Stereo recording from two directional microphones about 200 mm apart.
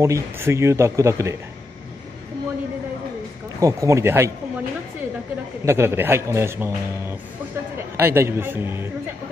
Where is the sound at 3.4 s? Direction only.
15° right (ahead or behind).